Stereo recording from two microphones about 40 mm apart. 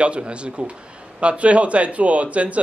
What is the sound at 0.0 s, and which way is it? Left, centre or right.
Speech, right.